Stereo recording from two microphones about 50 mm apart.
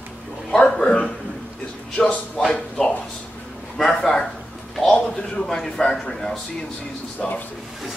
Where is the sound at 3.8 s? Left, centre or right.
Centre.